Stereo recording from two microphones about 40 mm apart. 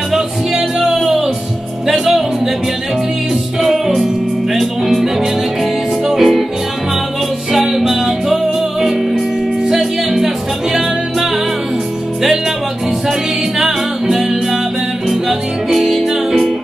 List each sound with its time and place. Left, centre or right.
0.1 s music: centre
3.6 s music: centre
7.5 s music: centre
9.7 s music: centre
13.6 s music: centre